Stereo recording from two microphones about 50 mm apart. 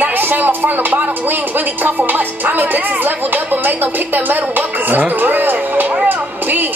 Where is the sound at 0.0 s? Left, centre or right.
Right.